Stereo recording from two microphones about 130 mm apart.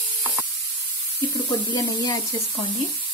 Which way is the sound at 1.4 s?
30° left (ahead or behind).